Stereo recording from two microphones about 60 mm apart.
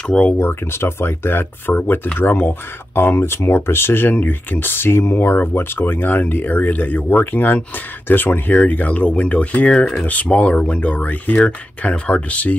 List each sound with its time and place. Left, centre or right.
0.0 s speech: centre
0.4 s speech: left